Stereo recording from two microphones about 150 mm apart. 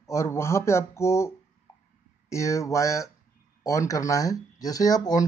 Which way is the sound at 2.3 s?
20° left (ahead or behind).